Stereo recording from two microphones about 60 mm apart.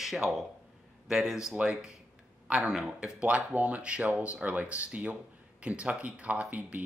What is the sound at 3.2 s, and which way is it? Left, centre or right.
Speech, right.